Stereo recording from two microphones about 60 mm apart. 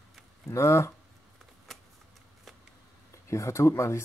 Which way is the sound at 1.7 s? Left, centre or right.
Centre.